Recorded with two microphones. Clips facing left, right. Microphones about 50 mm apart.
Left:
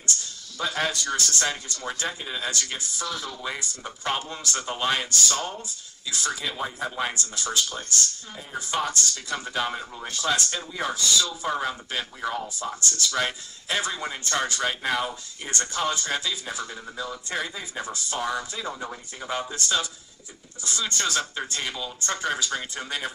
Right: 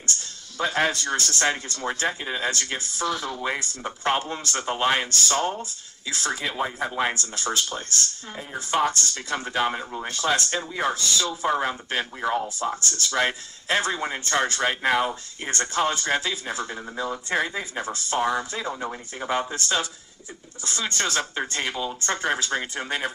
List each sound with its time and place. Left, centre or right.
0.6 s speech: right
12.7 s speech: right
18.2 s speech: right